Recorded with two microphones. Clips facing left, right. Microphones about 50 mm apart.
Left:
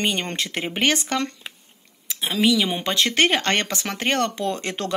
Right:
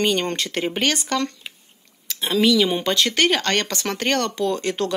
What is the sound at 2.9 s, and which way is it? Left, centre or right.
Speech, left.